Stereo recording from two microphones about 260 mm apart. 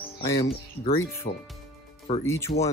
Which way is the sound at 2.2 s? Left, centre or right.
Centre.